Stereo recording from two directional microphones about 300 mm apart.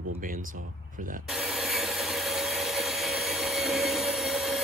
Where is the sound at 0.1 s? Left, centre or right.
Right.